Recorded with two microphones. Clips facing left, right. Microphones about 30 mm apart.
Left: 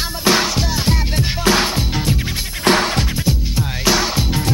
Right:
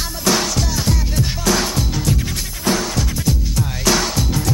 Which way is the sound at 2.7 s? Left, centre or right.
Left.